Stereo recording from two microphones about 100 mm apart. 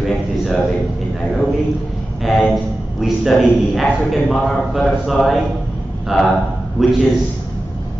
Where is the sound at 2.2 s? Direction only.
Centre (ahead or behind).